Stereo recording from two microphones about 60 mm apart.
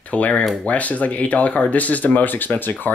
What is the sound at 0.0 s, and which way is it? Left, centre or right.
Speech, left.